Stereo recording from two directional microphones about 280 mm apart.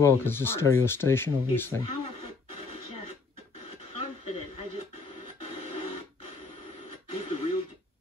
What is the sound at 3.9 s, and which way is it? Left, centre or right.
Television, left.